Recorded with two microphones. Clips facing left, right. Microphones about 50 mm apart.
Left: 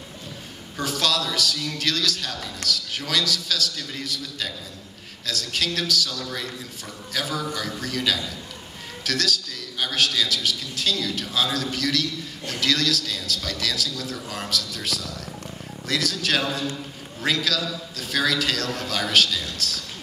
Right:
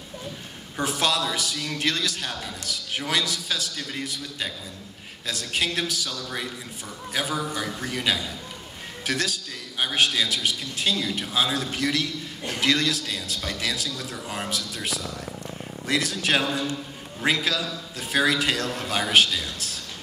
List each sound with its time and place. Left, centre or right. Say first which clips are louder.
0.7 s a man's voice: even; right